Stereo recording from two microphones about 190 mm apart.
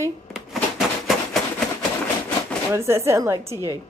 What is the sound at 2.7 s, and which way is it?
A child's voice, 15° right (ahead or behind).